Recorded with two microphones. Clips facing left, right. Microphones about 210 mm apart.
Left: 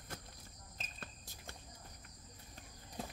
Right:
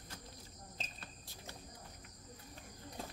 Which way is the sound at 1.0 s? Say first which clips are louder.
Even; 50° left (ahead or behind).